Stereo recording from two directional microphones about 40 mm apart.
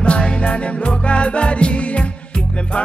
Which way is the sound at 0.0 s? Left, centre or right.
Left.